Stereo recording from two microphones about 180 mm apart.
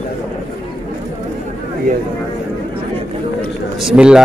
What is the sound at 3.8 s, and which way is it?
Speech, 5° right (ahead or behind).